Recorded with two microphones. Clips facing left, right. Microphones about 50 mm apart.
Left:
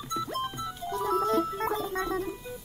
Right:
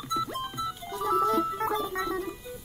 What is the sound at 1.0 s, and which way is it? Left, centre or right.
Music, right.